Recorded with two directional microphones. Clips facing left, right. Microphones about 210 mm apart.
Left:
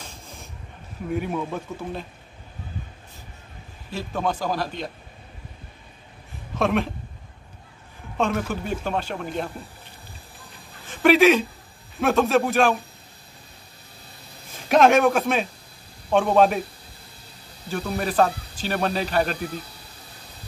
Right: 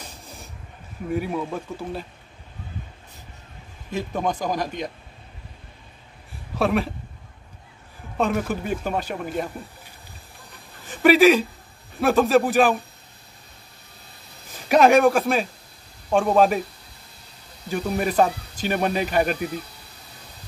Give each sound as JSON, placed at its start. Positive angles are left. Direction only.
{"t": 1.1, "sound": "a man's voice", "side_deg": 0}
{"t": 3.9, "sound": "speech", "side_deg": -15}
{"t": 6.6, "sound": "a man's voice", "side_deg": -5}
{"t": 8.2, "sound": "speech", "side_deg": -5}
{"t": 10.9, "sound": "a sound", "side_deg": -5}
{"t": 12.0, "sound": "a man's voice", "side_deg": 0}
{"t": 14.7, "sound": "a man's voice", "side_deg": -5}
{"t": 17.6, "sound": "speech", "side_deg": -5}